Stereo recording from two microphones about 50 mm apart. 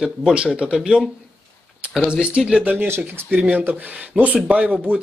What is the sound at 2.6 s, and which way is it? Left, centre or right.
Speech, right.